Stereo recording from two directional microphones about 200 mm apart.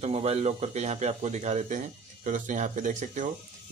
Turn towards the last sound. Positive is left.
turn(degrees=-35)  # may be behind; listen again after turning